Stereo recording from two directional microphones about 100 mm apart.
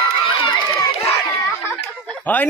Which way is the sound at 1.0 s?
25° left (ahead or behind).